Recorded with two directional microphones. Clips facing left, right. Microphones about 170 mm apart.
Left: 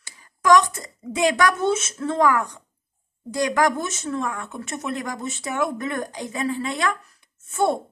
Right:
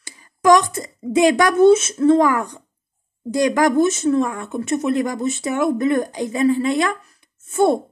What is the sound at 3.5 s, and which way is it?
Speech, 20° right (ahead or behind).